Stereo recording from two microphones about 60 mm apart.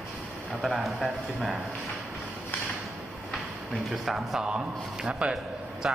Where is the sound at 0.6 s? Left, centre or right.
Centre.